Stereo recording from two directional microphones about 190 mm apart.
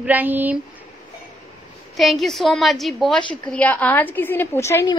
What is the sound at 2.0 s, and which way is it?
A woman's voice, centre (ahead or behind).